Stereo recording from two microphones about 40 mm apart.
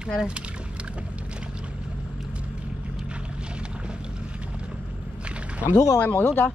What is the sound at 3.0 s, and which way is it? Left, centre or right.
Boat, right.